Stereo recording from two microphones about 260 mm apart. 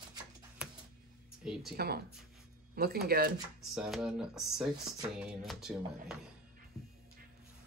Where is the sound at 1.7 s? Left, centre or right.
Right.